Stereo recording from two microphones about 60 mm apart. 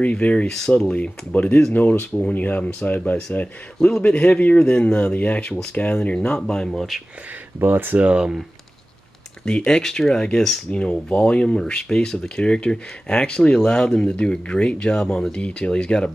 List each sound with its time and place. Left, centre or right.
0.0 s a man's voice: left
0.9 s a man's voice: left; by 7.0 s centre
7.6 s speech: right
9.7 s speech: centre